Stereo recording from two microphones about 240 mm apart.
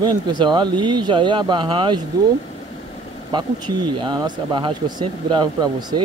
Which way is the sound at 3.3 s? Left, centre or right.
Centre.